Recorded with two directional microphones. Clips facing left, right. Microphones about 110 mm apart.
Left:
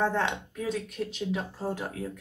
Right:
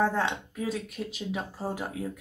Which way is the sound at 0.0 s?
5° right (ahead or behind).